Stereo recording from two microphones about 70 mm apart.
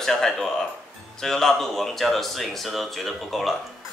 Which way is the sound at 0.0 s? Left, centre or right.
Centre.